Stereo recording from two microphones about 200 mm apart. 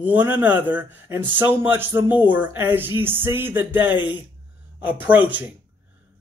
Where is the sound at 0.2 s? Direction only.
10° right (ahead or behind).